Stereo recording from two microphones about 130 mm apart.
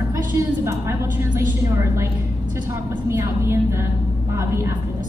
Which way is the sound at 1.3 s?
20° right (ahead or behind).